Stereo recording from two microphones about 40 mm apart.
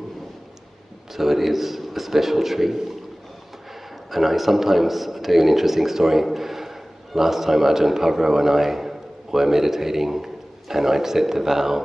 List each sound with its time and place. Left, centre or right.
1.1 s a man's voice: centre
4.1 s a man's voice: centre